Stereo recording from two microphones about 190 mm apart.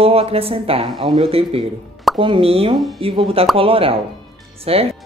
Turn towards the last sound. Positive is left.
turn(degrees=-30)  # may be behind; listen again after turning